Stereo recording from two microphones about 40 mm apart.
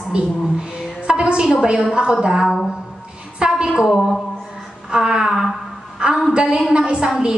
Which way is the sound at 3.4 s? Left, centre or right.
Right.